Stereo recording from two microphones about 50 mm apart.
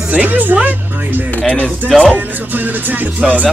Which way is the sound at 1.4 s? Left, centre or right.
Left.